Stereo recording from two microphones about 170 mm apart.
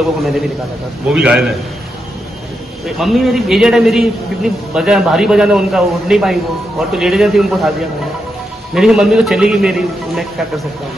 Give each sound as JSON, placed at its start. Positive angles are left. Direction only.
{"t": 1.0, "sound": "a man's voice", "side_deg": -5}
{"t": 3.0, "sound": "a man's voice", "side_deg": 0}
{"t": 8.7, "sound": "a man's voice", "side_deg": -5}